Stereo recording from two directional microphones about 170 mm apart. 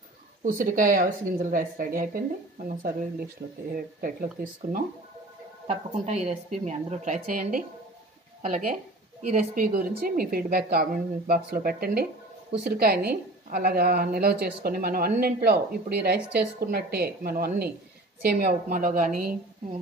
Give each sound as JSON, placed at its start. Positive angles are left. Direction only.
{"t": 0.4, "sound": "a woman's voice", "side_deg": -50}
{"t": 5.7, "sound": "a woman's voice", "side_deg": -40}